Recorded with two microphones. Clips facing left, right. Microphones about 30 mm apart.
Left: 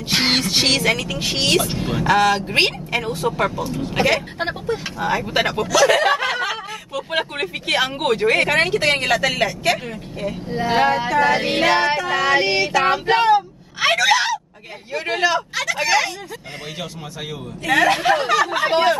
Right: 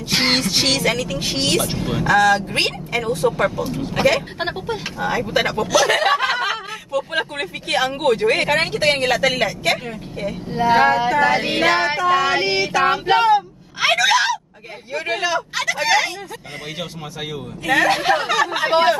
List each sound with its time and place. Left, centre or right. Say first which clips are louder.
0.3 s speech: left 1 dB; centre
0.9 s speech: even; left
3.2 s speech: right 2 dB; centre
5.7 s speech: left 2 dB; centre
6.3 s snicker: right 2 dB; centre
7.1 s speech: left 1 dB; centre
11.1 s female singing: even; centre
14.9 s speech: left 2 dB; centre
17.6 s speech: even; centre